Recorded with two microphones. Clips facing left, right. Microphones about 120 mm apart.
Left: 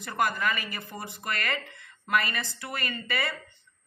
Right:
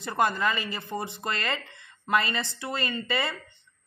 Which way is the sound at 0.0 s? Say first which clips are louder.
Right 2 dB; 25° right (ahead or behind).